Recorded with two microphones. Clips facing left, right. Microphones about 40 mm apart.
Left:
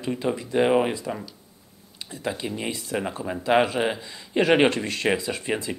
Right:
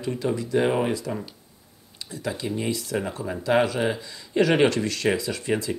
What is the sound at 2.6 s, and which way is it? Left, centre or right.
Speech, left.